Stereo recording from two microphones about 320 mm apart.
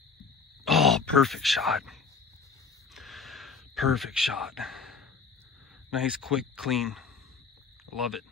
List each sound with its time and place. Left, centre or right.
0.7 s speech: centre
2.9 s whispering: centre
5.9 s speech: centre